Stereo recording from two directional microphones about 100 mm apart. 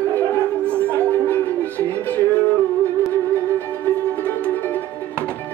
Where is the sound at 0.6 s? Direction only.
20° right (ahead or behind).